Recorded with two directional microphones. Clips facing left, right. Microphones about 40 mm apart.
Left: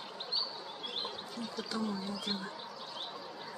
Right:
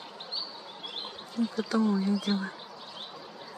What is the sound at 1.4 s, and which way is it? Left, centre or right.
Speech, right.